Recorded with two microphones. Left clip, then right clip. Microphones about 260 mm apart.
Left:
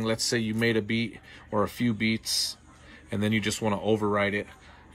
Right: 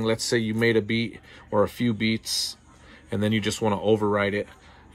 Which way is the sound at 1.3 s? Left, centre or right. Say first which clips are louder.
Right 5 dB; centre.